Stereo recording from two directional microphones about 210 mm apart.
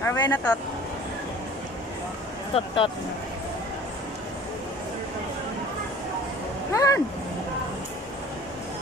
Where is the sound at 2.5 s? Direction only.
25° left (ahead or behind).